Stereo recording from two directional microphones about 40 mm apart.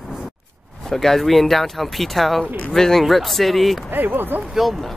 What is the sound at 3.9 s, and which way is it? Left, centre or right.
Speech, right.